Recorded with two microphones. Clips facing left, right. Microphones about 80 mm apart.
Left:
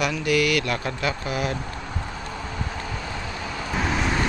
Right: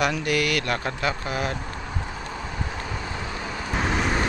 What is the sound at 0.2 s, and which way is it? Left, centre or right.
Speech, right.